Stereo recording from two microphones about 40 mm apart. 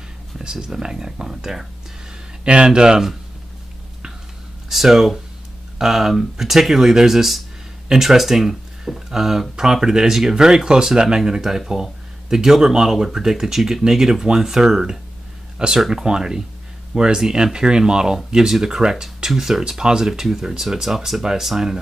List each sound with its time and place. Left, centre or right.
0.4 s speech: centre
2.4 s speech: right
4.6 s speech: centre